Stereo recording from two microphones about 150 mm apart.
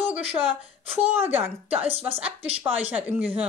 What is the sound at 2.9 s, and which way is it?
Speech, 10° right (ahead or behind).